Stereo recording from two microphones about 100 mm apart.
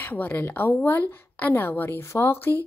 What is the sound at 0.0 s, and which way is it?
A woman's voice, 15° left (ahead or behind).